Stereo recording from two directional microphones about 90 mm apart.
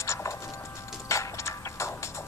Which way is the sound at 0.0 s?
30° left (ahead or behind).